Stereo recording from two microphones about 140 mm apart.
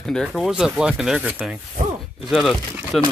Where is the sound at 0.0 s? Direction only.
5° left (ahead or behind).